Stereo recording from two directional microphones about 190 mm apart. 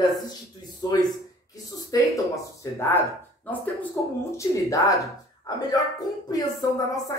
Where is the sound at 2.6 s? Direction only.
15° left (ahead or behind).